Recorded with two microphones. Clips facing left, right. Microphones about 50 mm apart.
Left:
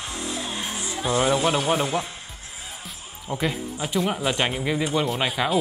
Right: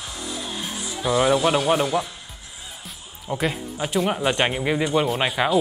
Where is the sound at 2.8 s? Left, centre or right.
Centre.